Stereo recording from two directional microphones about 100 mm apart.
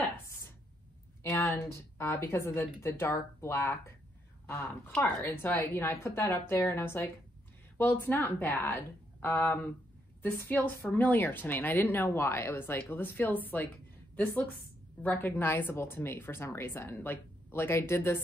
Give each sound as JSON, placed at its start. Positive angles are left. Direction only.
{"t": 1.2, "sound": "a woman's voice", "side_deg": 20}